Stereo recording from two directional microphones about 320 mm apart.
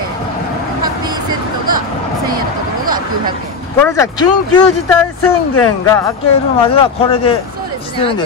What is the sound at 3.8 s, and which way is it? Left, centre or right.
Speech, centre.